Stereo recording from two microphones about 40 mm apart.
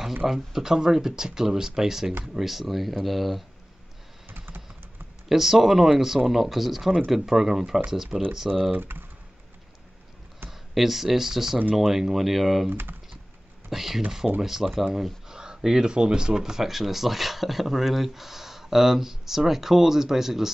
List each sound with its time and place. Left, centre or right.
0.3 s speech: centre
4.3 s computer keyboard: right
5.3 s speech: centre
8.7 s speech: right
10.7 s speech: centre
12.6 s speech: right
13.7 s speech: centre
15.2 s speech: centre